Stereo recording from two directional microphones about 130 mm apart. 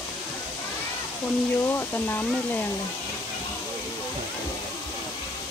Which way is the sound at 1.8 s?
15° left (ahead or behind).